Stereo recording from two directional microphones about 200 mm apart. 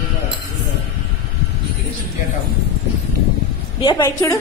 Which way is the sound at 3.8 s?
20° left (ahead or behind).